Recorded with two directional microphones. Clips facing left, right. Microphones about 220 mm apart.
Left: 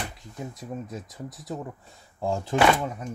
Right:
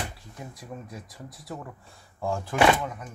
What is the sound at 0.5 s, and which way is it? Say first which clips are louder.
Speech: left 4 dB; 20° left (ahead or behind).